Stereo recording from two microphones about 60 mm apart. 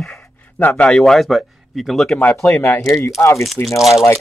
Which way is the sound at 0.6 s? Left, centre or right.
Left.